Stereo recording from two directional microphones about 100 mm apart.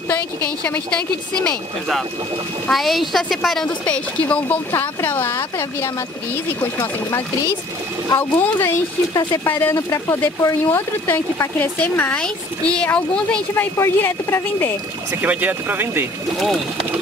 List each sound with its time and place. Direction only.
0.1 s speech: 10° left (ahead or behind)
8.1 s a woman's voice: 20° left (ahead or behind)
13.7 s a woman's voice: 25° left (ahead or behind)
15.2 s speech: 20° right (ahead or behind)